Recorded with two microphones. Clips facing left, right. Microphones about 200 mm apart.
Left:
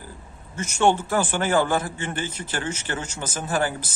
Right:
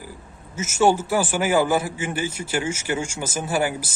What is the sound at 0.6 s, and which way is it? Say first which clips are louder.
A man's voice: right 2 dB; 5° right (ahead or behind).